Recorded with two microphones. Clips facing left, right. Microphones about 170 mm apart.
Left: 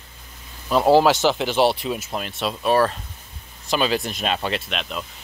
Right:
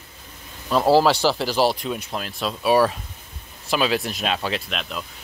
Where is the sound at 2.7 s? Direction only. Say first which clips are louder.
Right 1 dB; 10° right (ahead or behind).